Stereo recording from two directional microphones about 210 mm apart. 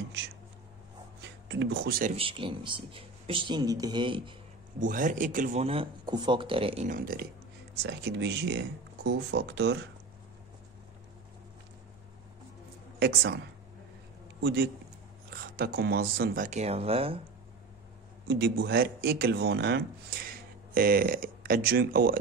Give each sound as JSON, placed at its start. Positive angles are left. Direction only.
{"t": 1.5, "sound": "speech", "side_deg": -55}
{"t": 2.1, "sound": "speech", "side_deg": -25}
{"t": 4.7, "sound": "speech", "side_deg": -40}
{"t": 6.9, "sound": "speech", "side_deg": -45}
{"t": 13.0, "sound": "speech", "side_deg": -50}
{"t": 14.4, "sound": "a man's voice", "side_deg": -50}
{"t": 18.2, "sound": "speech", "side_deg": -55}